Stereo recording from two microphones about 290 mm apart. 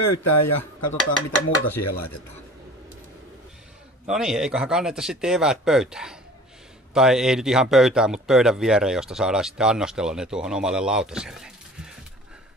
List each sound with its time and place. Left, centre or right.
0.0 s speech: left
4.1 s a man's voice: centre